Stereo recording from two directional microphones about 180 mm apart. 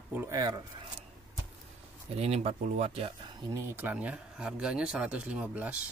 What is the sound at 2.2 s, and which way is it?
Speech, 35° right (ahead or behind).